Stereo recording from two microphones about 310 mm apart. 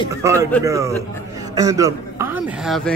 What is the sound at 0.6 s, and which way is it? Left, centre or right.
A man's voice, centre.